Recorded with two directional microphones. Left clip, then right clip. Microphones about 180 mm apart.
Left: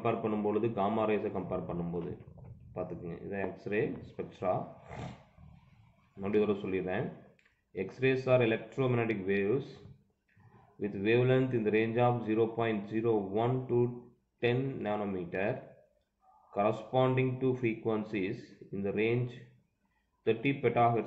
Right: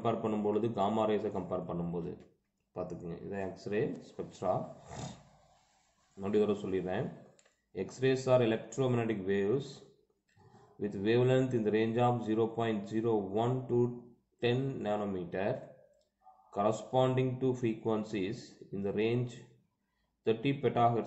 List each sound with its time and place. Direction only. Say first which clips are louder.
0.0 s speech: left 1 dB; 15° right (ahead or behind)
6.2 s speech: left 1 dB; 15° right (ahead or behind)
10.8 s speech: left 1 dB; 15° right (ahead or behind)
16.5 s speech: left 1 dB; 15° right (ahead or behind)